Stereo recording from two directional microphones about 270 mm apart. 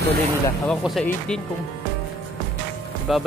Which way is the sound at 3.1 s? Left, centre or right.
Centre.